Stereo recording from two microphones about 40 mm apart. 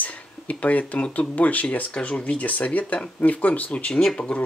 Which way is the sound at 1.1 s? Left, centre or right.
Left.